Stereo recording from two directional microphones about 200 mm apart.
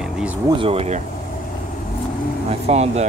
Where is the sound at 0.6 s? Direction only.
30° right (ahead or behind).